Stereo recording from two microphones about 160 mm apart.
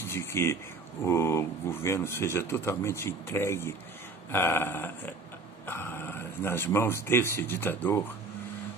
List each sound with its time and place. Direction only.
0.0 s speech: 15° left (ahead or behind)